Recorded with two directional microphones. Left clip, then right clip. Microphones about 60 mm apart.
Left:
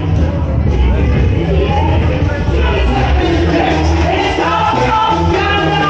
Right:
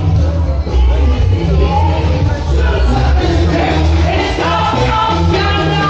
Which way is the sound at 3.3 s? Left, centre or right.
Left.